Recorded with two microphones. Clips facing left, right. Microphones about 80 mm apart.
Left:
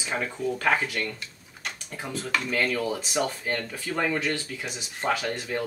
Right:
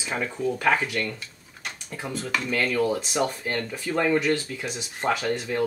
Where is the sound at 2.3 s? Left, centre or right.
Centre.